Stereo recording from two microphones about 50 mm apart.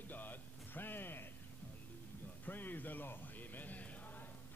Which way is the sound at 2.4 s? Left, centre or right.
Left.